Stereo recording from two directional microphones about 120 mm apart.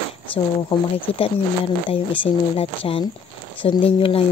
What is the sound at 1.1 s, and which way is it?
Speech, 50° left (ahead or behind).